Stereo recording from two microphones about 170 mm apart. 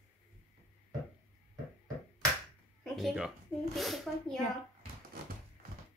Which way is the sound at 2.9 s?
Centre (ahead or behind).